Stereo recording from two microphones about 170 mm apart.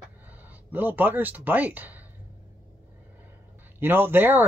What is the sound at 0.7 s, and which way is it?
Speech, 10° right (ahead or behind).